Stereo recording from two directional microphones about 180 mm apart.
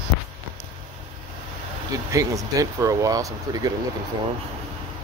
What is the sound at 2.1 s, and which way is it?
Speech, 20° right (ahead or behind).